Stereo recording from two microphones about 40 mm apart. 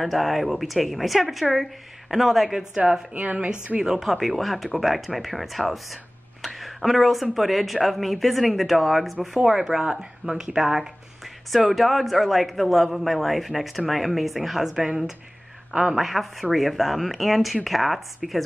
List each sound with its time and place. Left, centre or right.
0.0 s a man's voice: centre
3.2 s a woman's voice: right
3.8 s a man's voice: centre
6.4 s a sound: centre
7.3 s a man's voice: centre
9.3 s speech: centre
11.7 s a man's voice: centre